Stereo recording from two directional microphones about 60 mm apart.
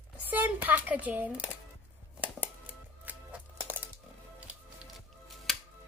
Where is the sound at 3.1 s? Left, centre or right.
Right.